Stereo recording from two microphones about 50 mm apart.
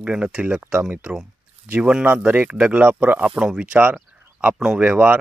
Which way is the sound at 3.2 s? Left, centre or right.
Centre.